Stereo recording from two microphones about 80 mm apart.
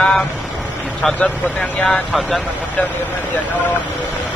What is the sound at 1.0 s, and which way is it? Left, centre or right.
Speech, centre.